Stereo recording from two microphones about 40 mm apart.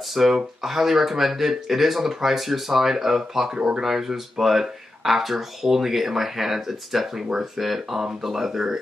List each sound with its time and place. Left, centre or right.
0.1 s speech: centre
3.5 s speech: right
3.8 s speech: centre